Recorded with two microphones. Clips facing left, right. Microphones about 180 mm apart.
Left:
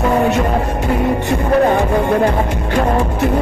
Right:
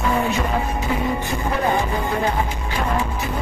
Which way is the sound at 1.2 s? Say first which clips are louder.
Left 8 dB; 70° left (ahead or behind).